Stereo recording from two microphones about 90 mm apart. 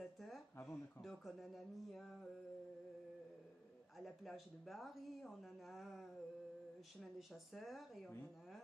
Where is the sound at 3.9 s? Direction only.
Centre (ahead or behind).